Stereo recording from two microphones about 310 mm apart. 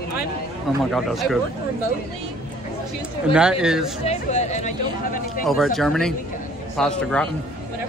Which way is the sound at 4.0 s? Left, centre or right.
Left.